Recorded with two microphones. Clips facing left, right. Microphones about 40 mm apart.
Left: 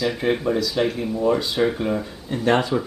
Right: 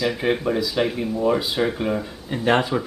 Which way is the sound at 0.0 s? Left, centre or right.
Centre.